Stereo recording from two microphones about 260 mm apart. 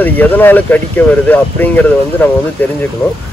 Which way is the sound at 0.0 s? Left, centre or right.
Centre.